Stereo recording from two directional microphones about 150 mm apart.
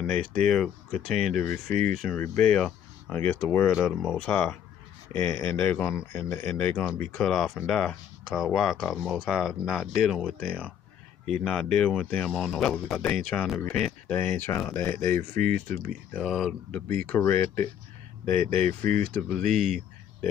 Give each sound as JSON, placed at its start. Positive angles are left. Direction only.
{"t": 0.0, "sound": "speech", "side_deg": 5}
{"t": 16.9, "sound": "speech", "side_deg": 10}